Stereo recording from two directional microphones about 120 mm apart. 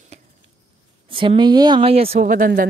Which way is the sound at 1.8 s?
55° right (ahead or behind).